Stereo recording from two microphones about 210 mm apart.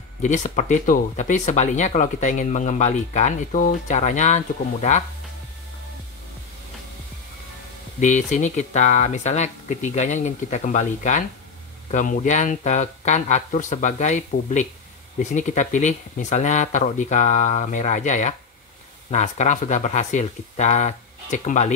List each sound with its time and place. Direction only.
0.2 s speech: 35° left (ahead or behind)
8.0 s speech: 35° left (ahead or behind)